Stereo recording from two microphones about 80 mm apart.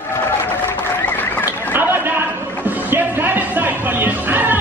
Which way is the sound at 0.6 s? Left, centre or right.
Left.